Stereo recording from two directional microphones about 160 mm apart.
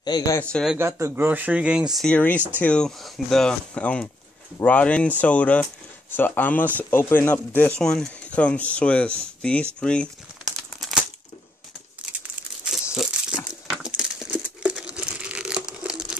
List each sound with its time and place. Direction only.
0.0 s speech: 25° left (ahead or behind)
0.4 s speech: 5° left (ahead or behind)
0.7 s speech: 15° right (ahead or behind); by 9.7 s 5° left (ahead or behind)
9.8 s crumpling: 5° left (ahead or behind)
12.9 s crumpling: centre (ahead or behind)